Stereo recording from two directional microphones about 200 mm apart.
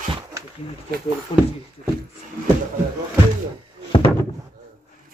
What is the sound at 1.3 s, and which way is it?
Speech, 25° left (ahead or behind).